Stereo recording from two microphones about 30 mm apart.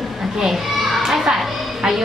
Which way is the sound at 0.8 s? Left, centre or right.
Centre.